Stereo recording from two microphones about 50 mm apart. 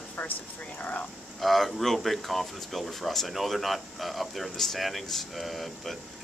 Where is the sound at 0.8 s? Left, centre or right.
Left.